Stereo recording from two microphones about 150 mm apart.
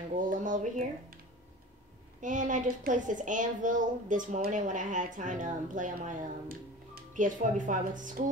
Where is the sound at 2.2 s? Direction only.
55° right (ahead or behind).